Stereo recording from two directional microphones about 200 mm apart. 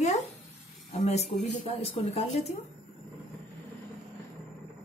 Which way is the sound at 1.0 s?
35° left (ahead or behind).